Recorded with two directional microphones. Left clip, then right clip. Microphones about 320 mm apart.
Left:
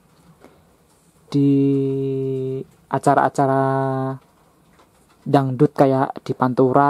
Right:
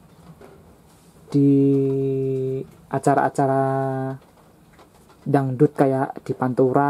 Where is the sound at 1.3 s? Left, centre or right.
Centre.